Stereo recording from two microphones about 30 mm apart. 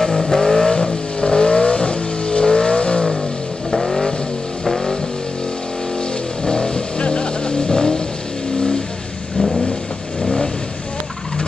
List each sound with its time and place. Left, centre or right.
0.0 s vehicle: centre; by 3.1 s left
3.7 s vehicle: centre
6.4 s vehicle: left
10.2 s vehicle: left